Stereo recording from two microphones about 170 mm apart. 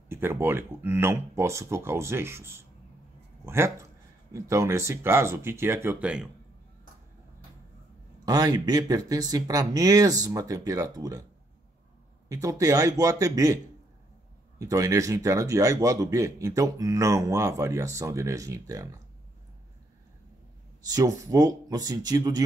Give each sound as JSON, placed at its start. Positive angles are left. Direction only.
{"t": 0.1, "sound": "speech", "side_deg": -15}
{"t": 8.3, "sound": "speech", "side_deg": -20}
{"t": 12.3, "sound": "speech", "side_deg": -20}
{"t": 14.6, "sound": "speech", "side_deg": -20}
{"t": 20.8, "sound": "speech", "side_deg": -20}